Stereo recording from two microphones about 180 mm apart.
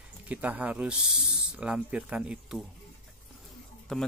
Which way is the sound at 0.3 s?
10° right (ahead or behind).